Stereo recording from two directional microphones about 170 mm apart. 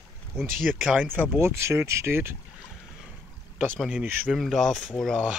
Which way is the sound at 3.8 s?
5° right (ahead or behind).